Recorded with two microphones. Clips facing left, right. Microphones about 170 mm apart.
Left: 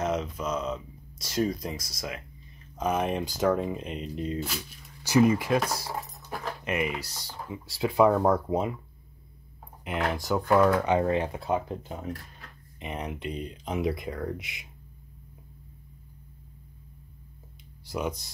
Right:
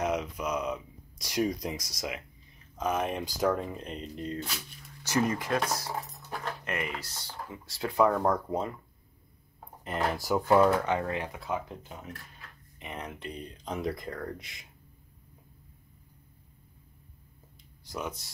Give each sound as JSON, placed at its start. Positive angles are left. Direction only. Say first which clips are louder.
{"t": 0.0, "sound": "speech", "louder": "left 1 dB", "side_deg": -10}
{"t": 2.8, "sound": "speech", "louder": "left 3 dB", "side_deg": 5}
{"t": 10.1, "sound": "speech", "louder": "left 1 dB", "side_deg": -5}
{"t": 10.8, "sound": "speech", "louder": "left 6 dB", "side_deg": 20}
{"t": 12.7, "sound": "speech", "louder": "left 5 dB", "side_deg": 20}